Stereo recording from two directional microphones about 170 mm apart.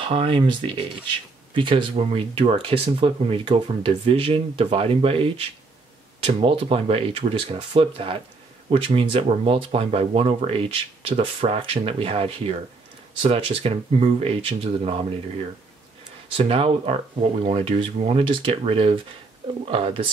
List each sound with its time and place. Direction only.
0.0 s speech: 35° right (ahead or behind)
16.3 s speech: 35° right (ahead or behind)